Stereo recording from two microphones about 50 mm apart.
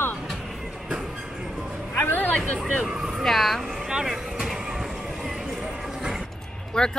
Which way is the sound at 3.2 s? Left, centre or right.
Centre.